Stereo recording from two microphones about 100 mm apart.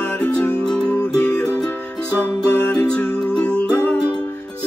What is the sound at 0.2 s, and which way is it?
Music, 10° left (ahead or behind).